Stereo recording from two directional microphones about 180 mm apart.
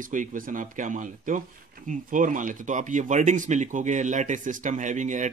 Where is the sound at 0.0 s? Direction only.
45° right (ahead or behind).